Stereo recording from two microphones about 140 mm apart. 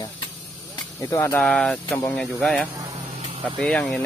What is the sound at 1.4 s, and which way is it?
Speech, 5° left (ahead or behind).